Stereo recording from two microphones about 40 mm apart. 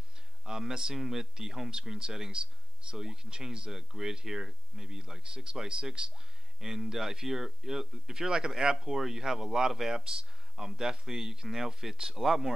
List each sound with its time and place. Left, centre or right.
0.5 s speech: centre